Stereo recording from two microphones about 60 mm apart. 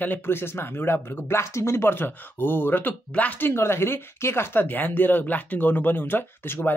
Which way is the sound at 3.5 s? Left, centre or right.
Left.